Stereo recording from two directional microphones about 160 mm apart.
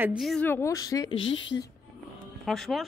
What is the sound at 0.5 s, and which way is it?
Speech, 15° left (ahead or behind).